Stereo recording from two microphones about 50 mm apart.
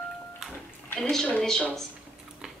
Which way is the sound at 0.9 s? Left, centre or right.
Centre.